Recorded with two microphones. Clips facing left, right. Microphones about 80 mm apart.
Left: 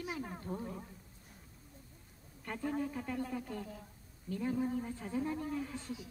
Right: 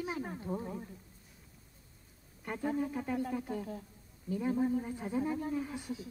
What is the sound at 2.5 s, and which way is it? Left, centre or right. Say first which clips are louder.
A woman's voice: right 3 dB; centre.